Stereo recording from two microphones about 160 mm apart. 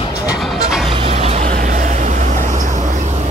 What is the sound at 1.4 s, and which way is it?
Vehicle, 60° right (ahead or behind).